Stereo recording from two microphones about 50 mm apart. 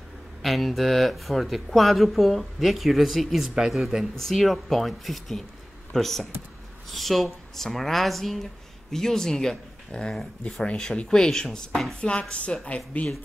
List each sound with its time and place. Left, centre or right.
0.4 s speech: centre
4.1 s speech: centre; by 13.1 s left